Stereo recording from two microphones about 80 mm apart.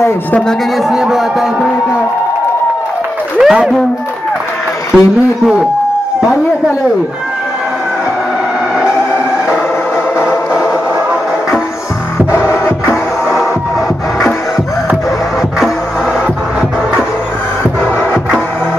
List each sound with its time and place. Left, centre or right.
0.8 s speech: centre
3.3 s a man's voice: centre
4.9 s a man's voice: centre
10.1 s music: left
12.3 s music: left